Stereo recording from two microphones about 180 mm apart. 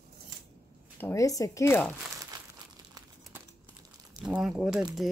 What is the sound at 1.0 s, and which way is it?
Speech, 15° left (ahead or behind).